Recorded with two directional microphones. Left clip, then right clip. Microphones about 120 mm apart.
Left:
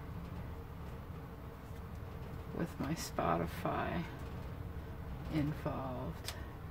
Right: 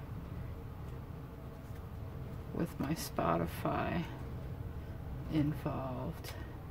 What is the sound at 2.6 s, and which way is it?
Speech, 15° right (ahead or behind).